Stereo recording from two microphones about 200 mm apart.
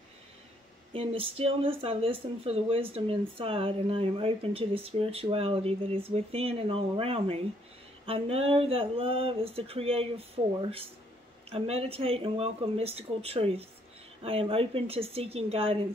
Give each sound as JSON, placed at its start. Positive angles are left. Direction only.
{"t": 0.9, "sound": "speech", "side_deg": -30}